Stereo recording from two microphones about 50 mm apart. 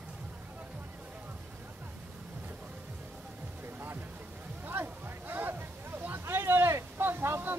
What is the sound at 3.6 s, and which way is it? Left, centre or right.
Music, right.